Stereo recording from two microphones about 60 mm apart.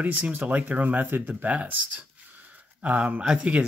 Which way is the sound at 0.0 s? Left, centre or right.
Right.